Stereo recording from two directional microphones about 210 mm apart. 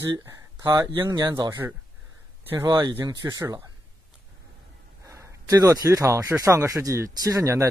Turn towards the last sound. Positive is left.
turn(degrees=-15)  # may be behind; listen again after turning